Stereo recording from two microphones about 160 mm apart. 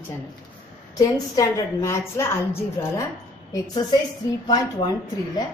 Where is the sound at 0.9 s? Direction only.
25° left (ahead or behind).